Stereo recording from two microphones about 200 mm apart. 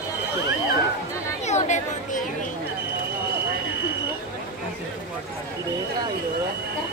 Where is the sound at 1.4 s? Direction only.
35° left (ahead or behind).